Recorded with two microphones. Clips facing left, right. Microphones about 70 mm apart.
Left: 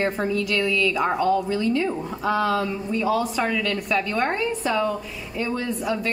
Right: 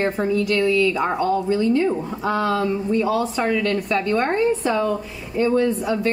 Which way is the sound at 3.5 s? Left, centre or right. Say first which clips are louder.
Right 4 dB; right.